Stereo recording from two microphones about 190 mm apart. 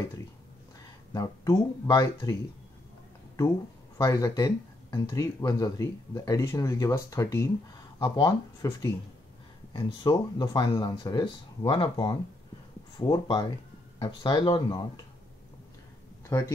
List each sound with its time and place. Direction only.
1.1 s speech: 20° left (ahead or behind)
4.0 s speech: 20° left (ahead or behind)
16.3 s speech: 15° left (ahead or behind)